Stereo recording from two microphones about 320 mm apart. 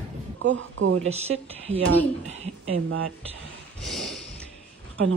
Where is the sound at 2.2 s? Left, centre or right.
Right.